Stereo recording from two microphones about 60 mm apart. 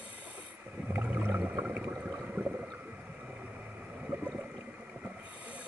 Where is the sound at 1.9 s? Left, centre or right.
Right.